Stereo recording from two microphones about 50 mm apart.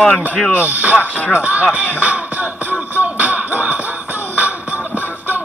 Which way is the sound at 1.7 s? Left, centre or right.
Right.